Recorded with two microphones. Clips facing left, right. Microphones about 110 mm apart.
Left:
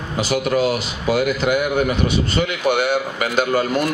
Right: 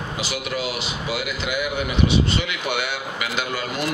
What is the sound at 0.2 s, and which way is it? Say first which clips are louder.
Speech: left 10 dB; 45° left (ahead or behind).